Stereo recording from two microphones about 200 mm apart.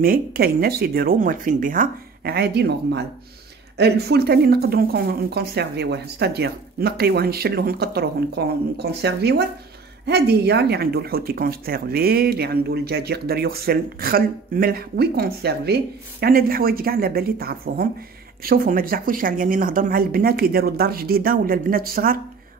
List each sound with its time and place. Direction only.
0.0 s speech: 50° right (ahead or behind)